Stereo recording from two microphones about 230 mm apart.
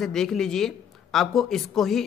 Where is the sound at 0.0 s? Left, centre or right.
Centre.